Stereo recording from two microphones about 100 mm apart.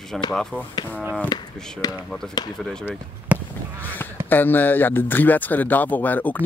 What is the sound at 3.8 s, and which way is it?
Honk, 20° left (ahead or behind).